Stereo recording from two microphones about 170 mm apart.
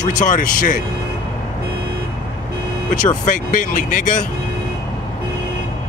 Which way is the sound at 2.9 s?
50° left (ahead or behind).